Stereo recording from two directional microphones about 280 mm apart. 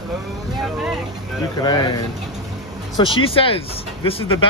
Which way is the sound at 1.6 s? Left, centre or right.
Centre.